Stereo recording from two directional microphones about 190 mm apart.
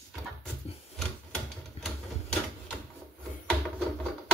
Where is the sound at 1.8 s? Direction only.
Centre (ahead or behind).